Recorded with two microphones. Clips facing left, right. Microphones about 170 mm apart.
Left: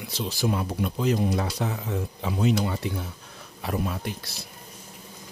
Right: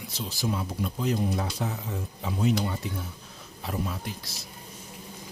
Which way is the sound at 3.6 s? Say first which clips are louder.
Left 4 dB; 65° left (ahead or behind).